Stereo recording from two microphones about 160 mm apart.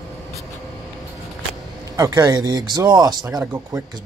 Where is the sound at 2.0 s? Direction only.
25° right (ahead or behind).